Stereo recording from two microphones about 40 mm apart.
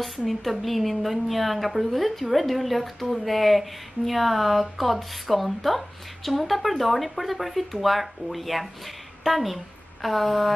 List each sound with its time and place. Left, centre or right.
0.3 s a woman's voice: centre